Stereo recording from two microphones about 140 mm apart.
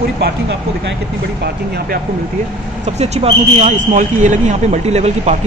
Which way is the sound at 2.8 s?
50° right (ahead or behind).